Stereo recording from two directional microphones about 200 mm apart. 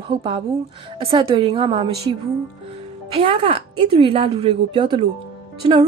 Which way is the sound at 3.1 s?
30° right (ahead or behind).